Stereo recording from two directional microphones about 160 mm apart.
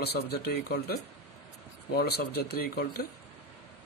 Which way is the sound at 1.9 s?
80° left.